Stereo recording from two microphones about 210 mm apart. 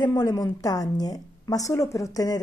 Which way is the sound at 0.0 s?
20° left (ahead or behind).